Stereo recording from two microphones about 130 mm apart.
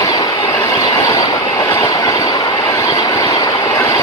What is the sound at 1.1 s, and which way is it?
Train, 30° left (ahead or behind).